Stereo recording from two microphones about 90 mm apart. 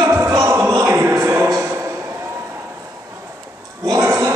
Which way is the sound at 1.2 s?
30° right (ahead or behind).